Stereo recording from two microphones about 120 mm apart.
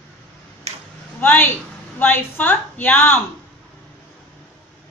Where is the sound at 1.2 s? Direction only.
15° left (ahead or behind).